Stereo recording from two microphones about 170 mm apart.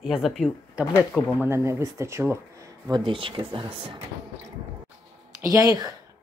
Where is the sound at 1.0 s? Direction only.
15° left (ahead or behind).